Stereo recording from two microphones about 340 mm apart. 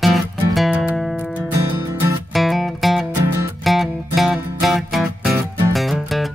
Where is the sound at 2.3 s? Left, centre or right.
Centre.